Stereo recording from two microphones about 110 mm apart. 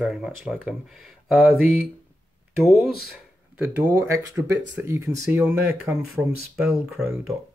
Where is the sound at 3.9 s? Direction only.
25° right (ahead or behind).